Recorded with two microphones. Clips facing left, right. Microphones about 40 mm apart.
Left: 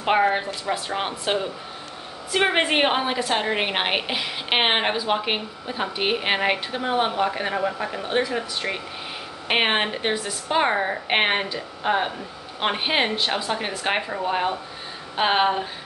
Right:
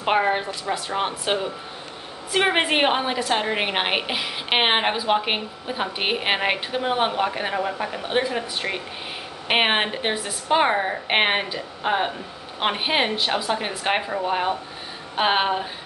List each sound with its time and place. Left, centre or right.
0.0 s a woman's voice: centre